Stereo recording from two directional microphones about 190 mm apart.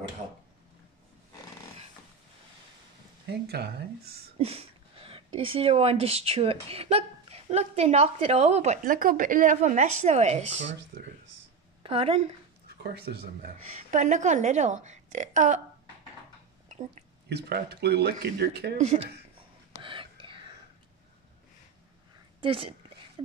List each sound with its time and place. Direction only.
3.4 s speech: 55° right (ahead or behind)
4.4 s speech: 30° right (ahead or behind)
11.8 s a woman's voice: 30° right (ahead or behind)
13.1 s speech: 55° right (ahead or behind)
13.7 s speech: 35° right (ahead or behind)
16.6 s whispering: 35° right (ahead or behind)
17.3 s speech: 60° right (ahead or behind)
18.8 s speech: 35° right (ahead or behind)
19.8 s whispering: 25° right (ahead or behind)
22.4 s a woman's voice: 30° right (ahead or behind)